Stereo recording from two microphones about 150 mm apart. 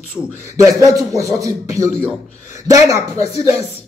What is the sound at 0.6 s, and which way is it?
A man's voice, 25° right (ahead or behind).